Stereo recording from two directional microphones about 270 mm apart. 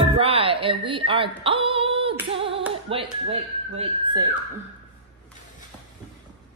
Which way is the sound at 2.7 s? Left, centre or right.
Right.